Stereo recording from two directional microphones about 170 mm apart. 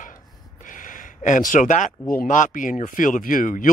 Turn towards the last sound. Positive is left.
turn(degrees=50)  # may be behind; listen again after turning